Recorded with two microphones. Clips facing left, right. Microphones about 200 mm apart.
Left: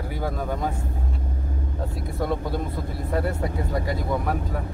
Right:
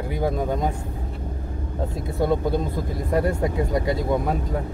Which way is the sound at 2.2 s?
20° right (ahead or behind).